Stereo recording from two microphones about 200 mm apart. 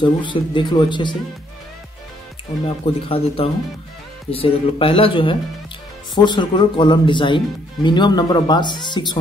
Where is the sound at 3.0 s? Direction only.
30° left (ahead or behind).